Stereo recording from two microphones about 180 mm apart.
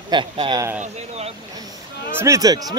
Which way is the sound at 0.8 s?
35° right (ahead or behind).